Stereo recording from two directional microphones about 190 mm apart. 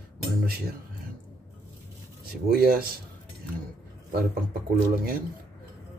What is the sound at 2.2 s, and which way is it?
Speech, 50° right (ahead or behind).